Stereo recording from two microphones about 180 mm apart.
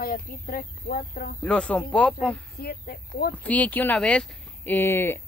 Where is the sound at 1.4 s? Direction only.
5° left (ahead or behind).